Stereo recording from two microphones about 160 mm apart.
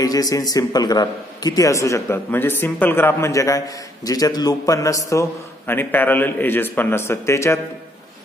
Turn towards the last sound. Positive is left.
turn(degrees=15)  # may be behind; listen again after turning